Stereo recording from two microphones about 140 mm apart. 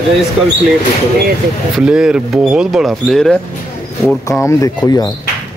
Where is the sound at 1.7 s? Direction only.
5° right (ahead or behind).